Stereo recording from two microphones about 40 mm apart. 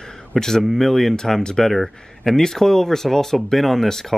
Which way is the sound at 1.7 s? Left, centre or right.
Centre.